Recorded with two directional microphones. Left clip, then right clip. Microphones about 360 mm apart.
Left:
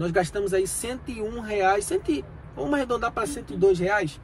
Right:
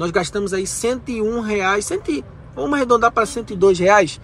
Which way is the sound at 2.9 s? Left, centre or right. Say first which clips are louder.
Right 12 dB; right.